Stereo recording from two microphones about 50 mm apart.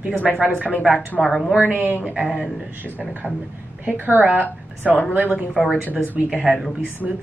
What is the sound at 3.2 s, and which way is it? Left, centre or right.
Speech, left.